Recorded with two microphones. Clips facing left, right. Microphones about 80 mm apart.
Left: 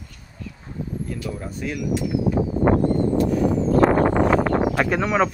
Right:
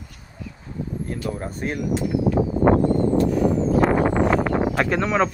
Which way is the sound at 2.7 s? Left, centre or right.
Right.